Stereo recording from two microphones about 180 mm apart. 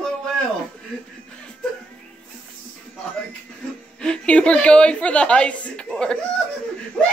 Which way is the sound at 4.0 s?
5° left (ahead or behind).